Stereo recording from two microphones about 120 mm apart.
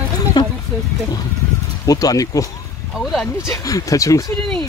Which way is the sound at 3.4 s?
30° left (ahead or behind).